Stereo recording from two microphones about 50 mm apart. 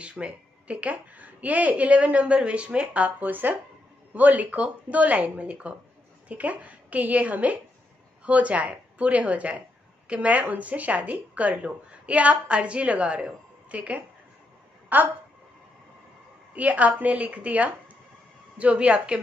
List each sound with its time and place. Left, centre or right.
0.0 s a woman's voice: right
16.5 s speech: right